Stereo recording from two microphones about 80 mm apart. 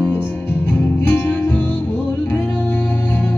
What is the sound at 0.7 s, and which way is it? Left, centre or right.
Music, left.